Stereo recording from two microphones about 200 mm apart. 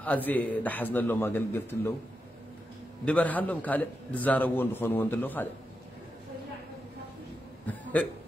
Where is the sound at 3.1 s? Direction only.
5° left (ahead or behind).